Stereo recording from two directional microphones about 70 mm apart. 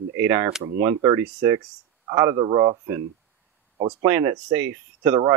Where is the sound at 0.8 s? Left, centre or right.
Right.